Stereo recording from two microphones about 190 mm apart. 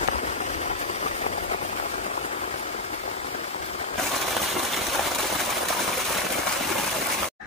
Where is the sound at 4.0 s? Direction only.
Centre (ahead or behind).